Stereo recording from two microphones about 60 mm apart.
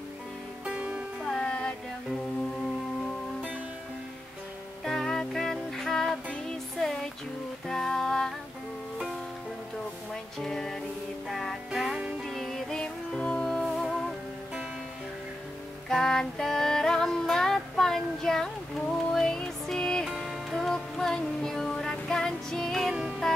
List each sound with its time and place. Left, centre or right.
0.7 s music: centre
1.2 s music: centre
4.8 s music: centre
10.4 s music: centre
11.7 s music: centre
12.3 s music: centre
15.9 s music: centre